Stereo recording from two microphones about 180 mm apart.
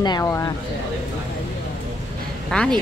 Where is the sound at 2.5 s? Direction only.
5° left (ahead or behind).